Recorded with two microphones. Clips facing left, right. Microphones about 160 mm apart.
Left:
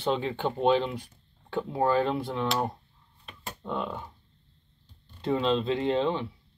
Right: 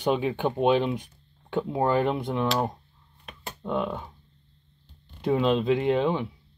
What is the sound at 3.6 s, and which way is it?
Speech, 15° right (ahead or behind).